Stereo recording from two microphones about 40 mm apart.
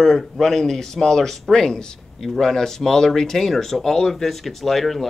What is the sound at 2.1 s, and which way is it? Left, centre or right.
Speech, centre.